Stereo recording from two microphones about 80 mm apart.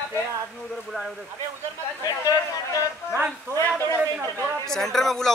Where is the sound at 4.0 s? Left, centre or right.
Right.